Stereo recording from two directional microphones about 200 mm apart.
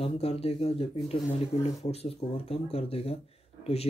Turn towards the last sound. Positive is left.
turn(degrees=30)  # may be behind; listen again after turning